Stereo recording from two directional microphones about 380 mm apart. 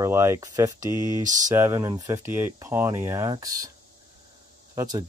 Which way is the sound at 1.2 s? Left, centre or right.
Centre.